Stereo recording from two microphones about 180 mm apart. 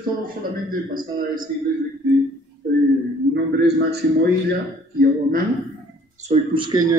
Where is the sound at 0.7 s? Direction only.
50° right (ahead or behind).